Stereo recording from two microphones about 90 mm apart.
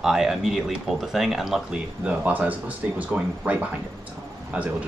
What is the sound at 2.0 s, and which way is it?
Speech, 15° right (ahead or behind).